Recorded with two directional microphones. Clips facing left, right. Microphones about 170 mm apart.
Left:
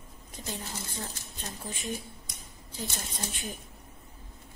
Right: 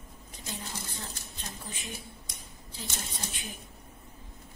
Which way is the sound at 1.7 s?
45° left (ahead or behind).